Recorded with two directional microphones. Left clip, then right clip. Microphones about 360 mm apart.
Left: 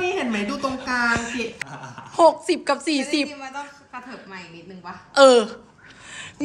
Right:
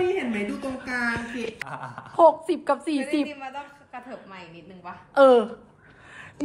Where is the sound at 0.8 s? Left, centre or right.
Centre.